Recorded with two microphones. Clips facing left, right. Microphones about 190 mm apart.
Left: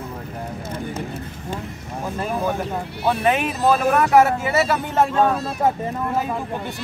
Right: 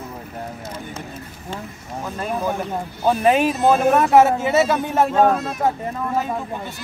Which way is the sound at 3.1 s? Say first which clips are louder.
Right 4 dB; 30° right (ahead or behind).